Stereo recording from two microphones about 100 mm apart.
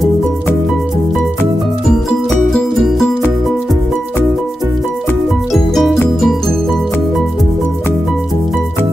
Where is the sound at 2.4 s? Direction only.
5° left (ahead or behind).